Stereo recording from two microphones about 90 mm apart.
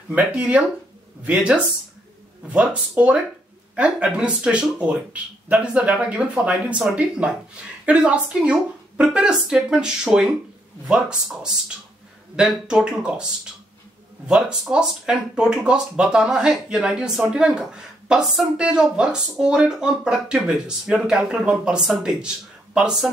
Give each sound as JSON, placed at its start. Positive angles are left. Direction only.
{"t": 0.1, "sound": "speech", "side_deg": -15}